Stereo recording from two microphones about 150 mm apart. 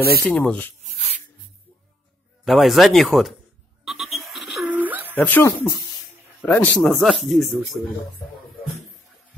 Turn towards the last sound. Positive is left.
turn(degrees=0)  # may be behind; listen again after turning